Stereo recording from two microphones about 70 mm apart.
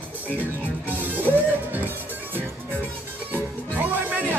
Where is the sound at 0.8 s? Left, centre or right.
Right.